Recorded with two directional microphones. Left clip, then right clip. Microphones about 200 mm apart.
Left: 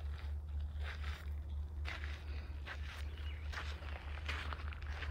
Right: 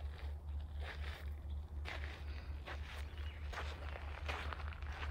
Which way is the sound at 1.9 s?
45° right (ahead or behind).